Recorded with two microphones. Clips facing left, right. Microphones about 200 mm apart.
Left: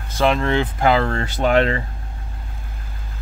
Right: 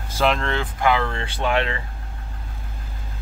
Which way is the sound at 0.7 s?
35° left (ahead or behind).